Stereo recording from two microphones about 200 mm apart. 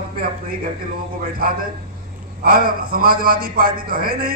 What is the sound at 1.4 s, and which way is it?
A man's voice, 45° right (ahead or behind).